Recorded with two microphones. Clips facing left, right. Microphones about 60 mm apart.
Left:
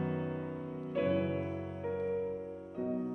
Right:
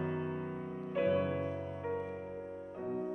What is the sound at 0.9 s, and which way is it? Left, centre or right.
Music, centre.